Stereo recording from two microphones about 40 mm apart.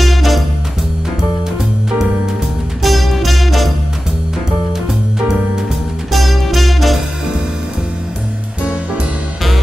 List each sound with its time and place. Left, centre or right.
0.0 s music: centre
2.8 s music: centre
6.1 s music: centre